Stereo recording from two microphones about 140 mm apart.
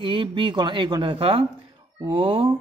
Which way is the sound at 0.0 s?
35° right (ahead or behind).